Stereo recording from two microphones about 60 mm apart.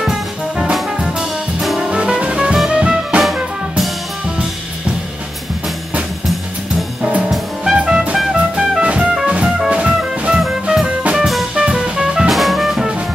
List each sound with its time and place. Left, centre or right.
0.0 s music: centre
1.8 s music: centre
7.0 s music: right
7.2 s music: centre
11.0 s music: right; by 12.8 s centre